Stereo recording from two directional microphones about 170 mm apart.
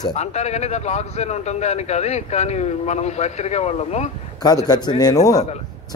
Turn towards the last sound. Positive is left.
turn(degrees=20)  # may be behind; listen again after turning